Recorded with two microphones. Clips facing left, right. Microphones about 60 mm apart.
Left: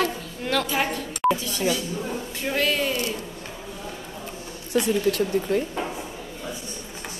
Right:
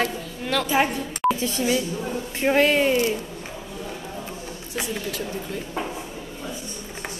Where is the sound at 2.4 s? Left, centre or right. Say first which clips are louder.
Right 6 dB; right.